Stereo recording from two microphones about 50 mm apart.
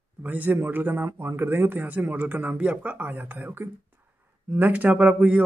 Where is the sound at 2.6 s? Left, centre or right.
Right.